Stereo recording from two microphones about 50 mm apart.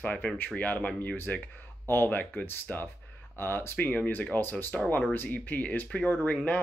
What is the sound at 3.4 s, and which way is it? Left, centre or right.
Speech, left.